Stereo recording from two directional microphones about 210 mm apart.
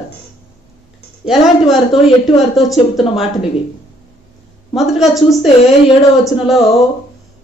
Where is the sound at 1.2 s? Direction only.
Centre (ahead or behind).